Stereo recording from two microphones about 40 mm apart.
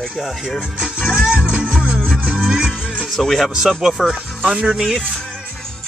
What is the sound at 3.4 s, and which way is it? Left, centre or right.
Speech, centre.